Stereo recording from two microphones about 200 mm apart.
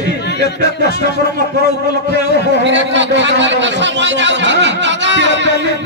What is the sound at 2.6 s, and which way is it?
A man's voice, 65° right (ahead or behind).